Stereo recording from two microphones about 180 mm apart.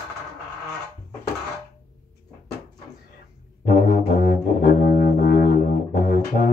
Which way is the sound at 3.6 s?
65° left (ahead or behind).